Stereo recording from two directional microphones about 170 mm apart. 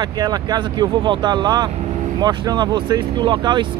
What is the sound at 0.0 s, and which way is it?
Speech, 25° right (ahead or behind).